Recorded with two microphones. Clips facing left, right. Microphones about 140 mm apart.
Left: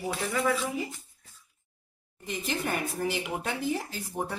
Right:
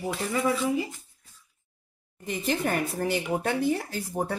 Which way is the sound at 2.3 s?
50° right (ahead or behind).